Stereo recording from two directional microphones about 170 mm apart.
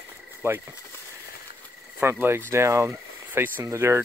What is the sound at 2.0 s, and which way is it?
Speech, 15° right (ahead or behind).